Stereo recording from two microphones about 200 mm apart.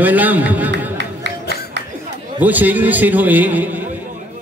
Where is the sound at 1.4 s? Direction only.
55° left (ahead or behind).